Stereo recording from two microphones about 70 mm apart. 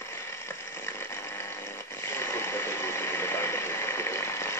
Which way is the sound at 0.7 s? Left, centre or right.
Left.